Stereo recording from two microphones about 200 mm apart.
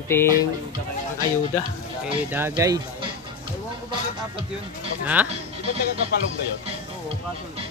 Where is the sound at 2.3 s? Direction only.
10° right (ahead or behind).